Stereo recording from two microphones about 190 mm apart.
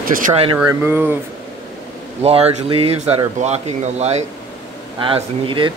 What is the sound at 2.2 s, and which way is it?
Speech, 30° right (ahead or behind).